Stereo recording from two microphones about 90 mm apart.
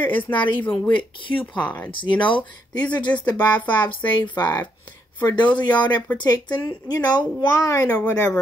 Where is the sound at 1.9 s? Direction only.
65° left (ahead or behind).